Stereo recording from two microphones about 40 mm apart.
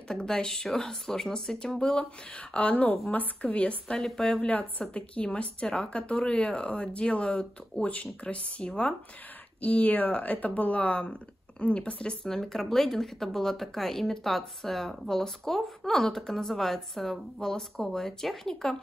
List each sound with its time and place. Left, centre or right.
0.1 s speech: centre
2.5 s a woman's voice: left
3.9 s speech: centre
4.4 s a woman's voice: left
9.6 s a woman's voice: left
12.3 s speech: centre